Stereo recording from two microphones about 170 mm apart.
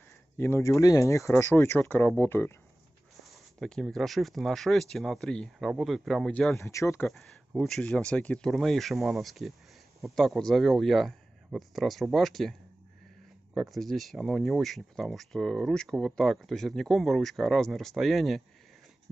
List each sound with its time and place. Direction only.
0.4 s speech: 15° left (ahead or behind)
3.5 s speech: centre (ahead or behind)
6.6 s speech: 15° left (ahead or behind)
7.1 s speech: centre (ahead or behind)
13.6 s speech: centre (ahead or behind)